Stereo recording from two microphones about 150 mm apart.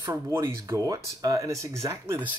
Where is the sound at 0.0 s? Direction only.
20° right (ahead or behind).